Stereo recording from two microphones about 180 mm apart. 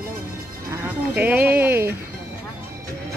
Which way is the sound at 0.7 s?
10° right (ahead or behind).